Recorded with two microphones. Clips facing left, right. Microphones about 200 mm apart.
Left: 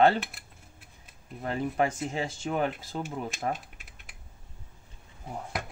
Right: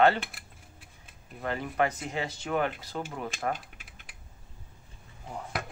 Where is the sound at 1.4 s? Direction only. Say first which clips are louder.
Left 1 dB; 30° left (ahead or behind).